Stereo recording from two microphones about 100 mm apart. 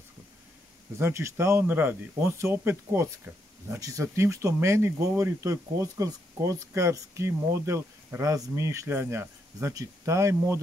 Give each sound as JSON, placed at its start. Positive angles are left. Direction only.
{"t": 0.9, "sound": "speech", "side_deg": -25}